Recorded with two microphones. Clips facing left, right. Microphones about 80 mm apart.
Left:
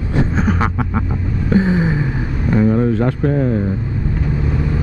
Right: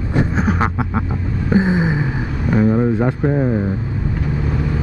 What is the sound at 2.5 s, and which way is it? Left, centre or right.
Speech, centre.